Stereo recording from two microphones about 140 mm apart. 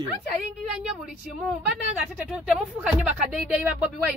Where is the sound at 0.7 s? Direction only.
5° right (ahead or behind).